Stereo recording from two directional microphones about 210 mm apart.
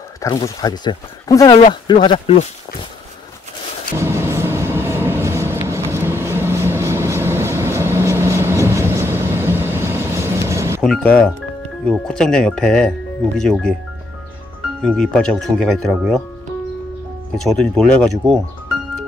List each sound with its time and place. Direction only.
0.2 s speech: 20° left (ahead or behind)
4.0 s train: 10° right (ahead or behind)
10.8 s music: 5° left (ahead or behind)
11.8 s speech: 5° left (ahead or behind)
14.8 s speech: 5° left (ahead or behind)
17.4 s speech: centre (ahead or behind)